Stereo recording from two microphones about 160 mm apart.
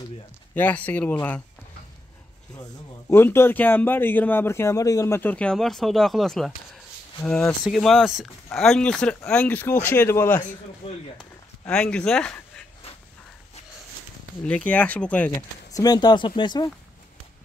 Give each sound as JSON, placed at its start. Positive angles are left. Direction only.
{"t": 0.6, "sound": "a man's voice", "side_deg": 10}
{"t": 2.5, "sound": "a man's voice", "side_deg": 20}
{"t": 11.6, "sound": "speech", "side_deg": 5}
{"t": 14.4, "sound": "a man's voice", "side_deg": 10}
{"t": 15.7, "sound": "speech", "side_deg": 25}